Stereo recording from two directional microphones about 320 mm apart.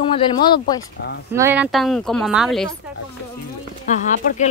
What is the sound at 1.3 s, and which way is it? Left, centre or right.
Speech, centre.